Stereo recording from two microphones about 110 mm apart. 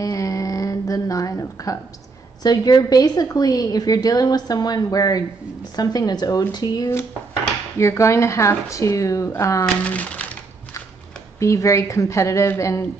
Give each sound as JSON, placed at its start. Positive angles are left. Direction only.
{"t": 0.0, "sound": "a sound", "side_deg": 30}
{"t": 2.4, "sound": "a woman's voice", "side_deg": 40}
{"t": 7.7, "sound": "speech", "side_deg": 25}
{"t": 9.8, "sound": "speech", "side_deg": 15}
{"t": 11.3, "sound": "speech", "side_deg": 30}